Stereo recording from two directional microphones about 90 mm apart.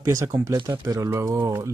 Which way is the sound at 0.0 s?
40° right (ahead or behind).